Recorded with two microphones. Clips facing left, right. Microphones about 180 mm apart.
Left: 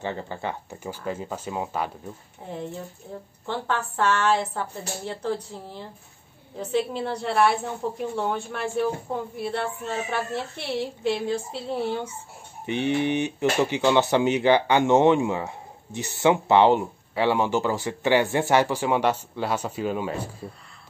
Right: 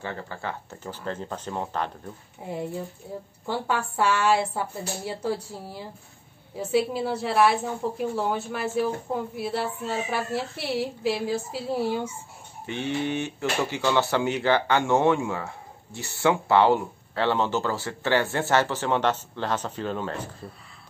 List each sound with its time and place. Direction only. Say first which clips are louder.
0.0 s speech: left 3 dB; 20° left (ahead or behind)
2.4 s a woman's voice: right 2 dB; 10° right (ahead or behind)
12.6 s speech: left 4 dB; 15° left (ahead or behind)